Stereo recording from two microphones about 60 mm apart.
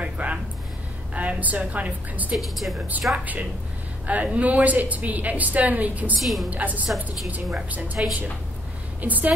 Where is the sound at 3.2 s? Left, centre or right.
Right.